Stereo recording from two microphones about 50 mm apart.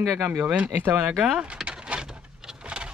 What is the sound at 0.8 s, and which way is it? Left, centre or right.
Speech, right.